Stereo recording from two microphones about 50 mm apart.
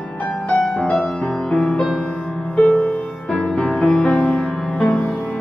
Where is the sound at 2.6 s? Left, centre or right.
Left.